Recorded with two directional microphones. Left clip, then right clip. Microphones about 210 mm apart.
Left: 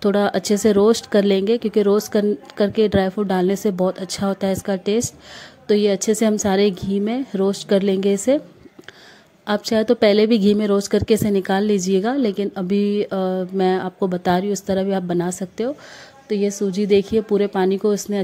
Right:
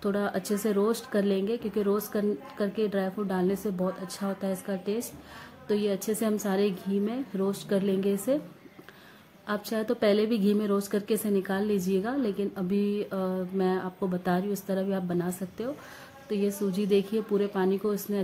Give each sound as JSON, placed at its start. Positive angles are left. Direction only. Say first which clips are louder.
{"t": 0.0, "sound": "a woman's voice", "louder": "left 11 dB", "side_deg": 35}
{"t": 9.5, "sound": "a woman's voice", "louder": "left 12 dB", "side_deg": 35}